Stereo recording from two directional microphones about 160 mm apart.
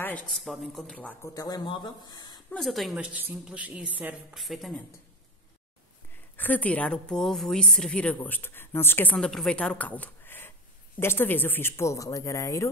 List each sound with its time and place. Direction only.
0.0 s speech: 5° left (ahead or behind)
1.3 s speech: 25° left (ahead or behind)
2.5 s a woman's voice: centre (ahead or behind)
4.4 s speech: centre (ahead or behind)
6.3 s a woman's voice: 10° left (ahead or behind)